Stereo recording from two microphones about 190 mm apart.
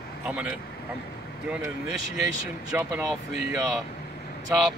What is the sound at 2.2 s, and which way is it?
Speech, 15° right (ahead or behind).